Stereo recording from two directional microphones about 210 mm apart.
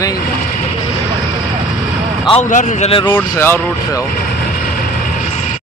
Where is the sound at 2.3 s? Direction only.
35° left (ahead or behind).